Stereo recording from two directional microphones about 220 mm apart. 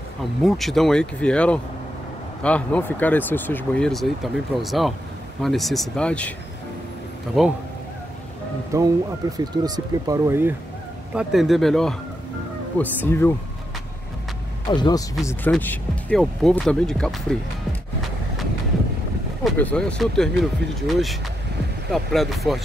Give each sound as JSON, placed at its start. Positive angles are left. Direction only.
{"t": 0.4, "sound": "speech", "side_deg": 0}
{"t": 7.3, "sound": "speech", "side_deg": 0}
{"t": 8.7, "sound": "speech", "side_deg": -15}
{"t": 11.1, "sound": "speech", "side_deg": 0}
{"t": 14.7, "sound": "speech", "side_deg": 20}
{"t": 15.5, "sound": "speech", "side_deg": 5}
{"t": 19.4, "sound": "speech", "side_deg": 5}